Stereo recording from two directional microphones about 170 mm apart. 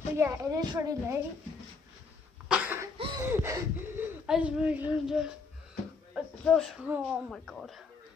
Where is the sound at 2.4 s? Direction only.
5° right (ahead or behind).